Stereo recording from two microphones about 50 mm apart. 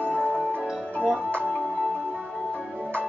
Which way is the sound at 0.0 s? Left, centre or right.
Left.